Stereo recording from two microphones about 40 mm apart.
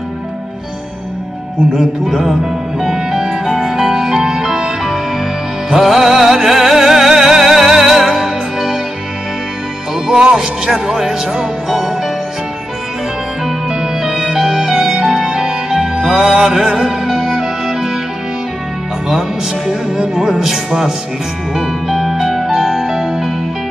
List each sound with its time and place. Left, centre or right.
1.8 s music: centre
9.9 s speech: centre
13.7 s music: centre
19.0 s music: centre